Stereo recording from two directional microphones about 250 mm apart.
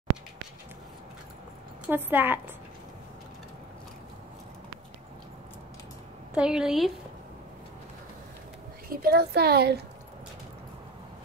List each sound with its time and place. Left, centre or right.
1.9 s a woman's voice: centre
6.3 s a woman's voice: centre
8.8 s a woman's voice: right